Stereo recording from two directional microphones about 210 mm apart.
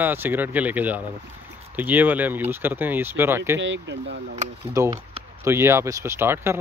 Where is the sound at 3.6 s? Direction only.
60° right (ahead or behind).